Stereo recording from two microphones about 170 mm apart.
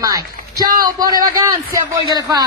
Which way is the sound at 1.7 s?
20° right (ahead or behind).